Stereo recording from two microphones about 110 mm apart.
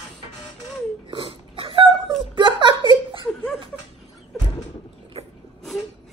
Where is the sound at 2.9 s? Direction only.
50° right (ahead or behind).